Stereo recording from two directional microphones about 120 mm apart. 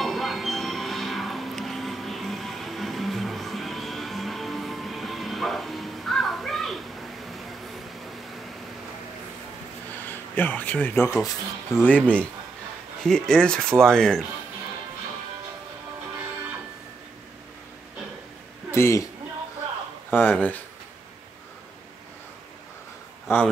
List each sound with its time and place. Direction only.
0.0 s music: centre (ahead or behind)
10.0 s speech: 15° left (ahead or behind)
18.7 s a man's voice: 25° left (ahead or behind)
20.1 s speech: 15° left (ahead or behind)
23.3 s speech: 20° left (ahead or behind)